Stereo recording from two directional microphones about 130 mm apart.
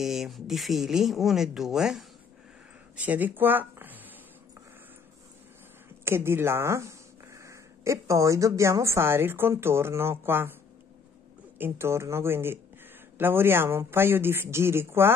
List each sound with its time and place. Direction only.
0.0 s speech: centre (ahead or behind)
6.0 s a woman's voice: 20° right (ahead or behind)
11.5 s speech: 15° right (ahead or behind)